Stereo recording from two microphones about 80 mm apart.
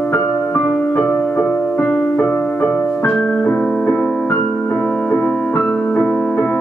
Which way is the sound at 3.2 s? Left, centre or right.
Centre.